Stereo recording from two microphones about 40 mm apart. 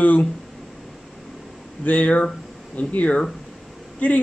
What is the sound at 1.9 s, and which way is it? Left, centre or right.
Speech, left.